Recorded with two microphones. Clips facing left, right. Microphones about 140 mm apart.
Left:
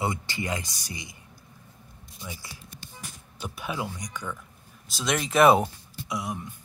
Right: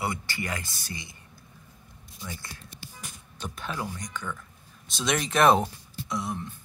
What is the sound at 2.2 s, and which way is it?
Speech, 10° left (ahead or behind).